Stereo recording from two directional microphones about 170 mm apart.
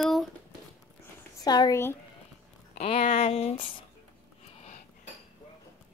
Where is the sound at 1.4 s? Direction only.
20° left (ahead or behind).